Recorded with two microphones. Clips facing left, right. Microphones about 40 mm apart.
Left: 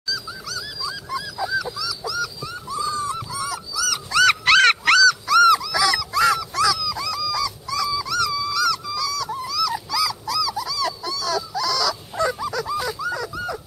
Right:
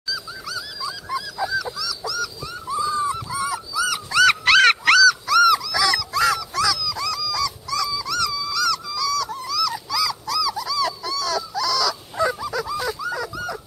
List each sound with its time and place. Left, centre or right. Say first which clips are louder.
0.1 s dog: even; centre
1.5 s dog: left 1 dB; centre
2.8 s dog: right 2 dB; centre
4.1 s dog: even; centre